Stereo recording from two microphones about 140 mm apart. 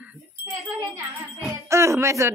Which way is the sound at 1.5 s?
20° right (ahead or behind).